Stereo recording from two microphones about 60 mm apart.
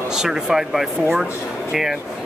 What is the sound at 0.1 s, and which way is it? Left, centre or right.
Speech, centre.